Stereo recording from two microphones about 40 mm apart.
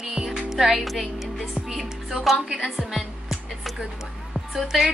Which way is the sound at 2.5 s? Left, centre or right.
Centre.